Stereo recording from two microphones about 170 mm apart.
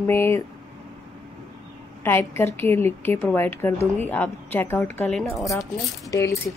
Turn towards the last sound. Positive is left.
turn(degrees=20)  # may be behind; listen again after turning